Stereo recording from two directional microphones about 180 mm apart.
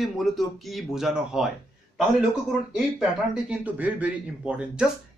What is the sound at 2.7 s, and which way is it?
Speech, centre (ahead or behind).